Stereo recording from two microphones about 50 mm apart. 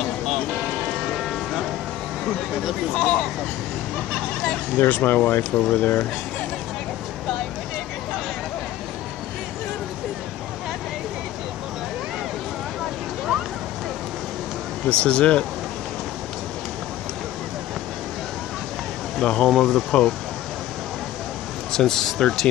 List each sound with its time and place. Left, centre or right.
2.9 s speech: centre
4.7 s speech: left
5.7 s speech: left
15.0 s speech: left
19.1 s speech: centre
21.7 s speech: centre